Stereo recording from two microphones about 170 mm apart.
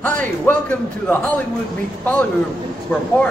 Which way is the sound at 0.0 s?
10° left (ahead or behind).